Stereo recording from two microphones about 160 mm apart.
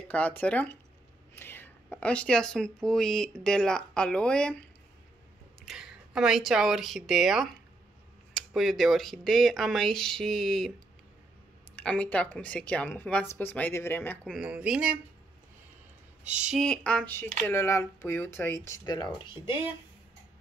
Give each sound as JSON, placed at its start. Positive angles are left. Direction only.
{"t": 0.1, "sound": "speech", "side_deg": 10}
{"t": 5.7, "sound": "speech", "side_deg": -5}
{"t": 11.7, "sound": "speech", "side_deg": 5}
{"t": 14.4, "sound": "speech", "side_deg": -5}
{"t": 16.3, "sound": "speech", "side_deg": -5}
{"t": 16.6, "sound": "speech", "side_deg": 5}
{"t": 18.9, "sound": "speech", "side_deg": 25}